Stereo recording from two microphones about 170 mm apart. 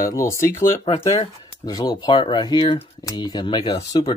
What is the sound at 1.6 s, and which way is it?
Speech, 25° left (ahead or behind).